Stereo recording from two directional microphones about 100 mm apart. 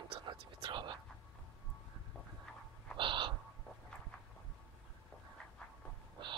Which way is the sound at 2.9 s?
55° right (ahead or behind).